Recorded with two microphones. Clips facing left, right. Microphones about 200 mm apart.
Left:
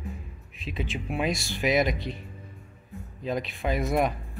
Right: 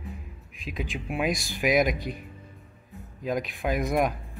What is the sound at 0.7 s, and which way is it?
Speech, centre (ahead or behind).